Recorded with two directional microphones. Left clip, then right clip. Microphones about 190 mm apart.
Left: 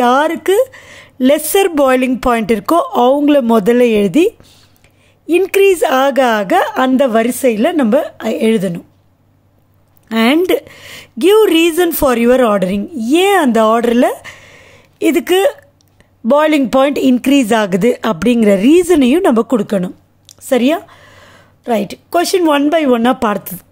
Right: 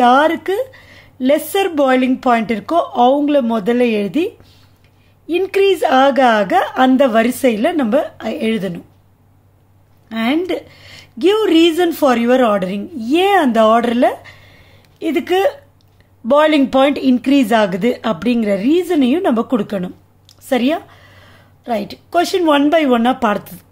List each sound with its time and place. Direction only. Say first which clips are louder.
0.0 s speech: even; 35° left (ahead or behind)
10.0 s speech: left 6 dB; 45° left (ahead or behind)